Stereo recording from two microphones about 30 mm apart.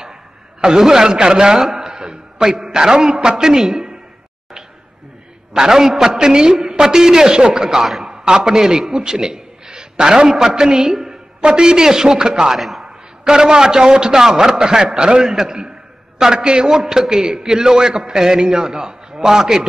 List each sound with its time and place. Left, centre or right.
0.6 s a man's voice: right
5.5 s a man's voice: centre
10.2 s a man's voice: centre
10.5 s a man's voice: right
10.9 s a woman's voice: centre
11.4 s a man's voice: right
12.5 s a man's voice: centre
12.8 s a man's voice: right